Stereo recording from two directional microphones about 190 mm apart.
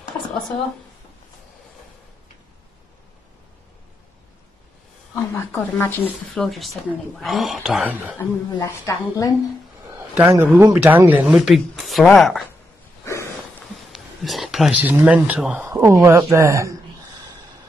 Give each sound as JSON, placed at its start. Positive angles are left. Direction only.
{"t": 5.1, "sound": "speech", "side_deg": 10}
{"t": 8.2, "sound": "speech", "side_deg": 15}
{"t": 9.9, "sound": "a sound", "side_deg": -10}
{"t": 10.3, "sound": "speech", "side_deg": -10}
{"t": 13.0, "sound": "a sound", "side_deg": 15}
{"t": 13.9, "sound": "speech", "side_deg": 0}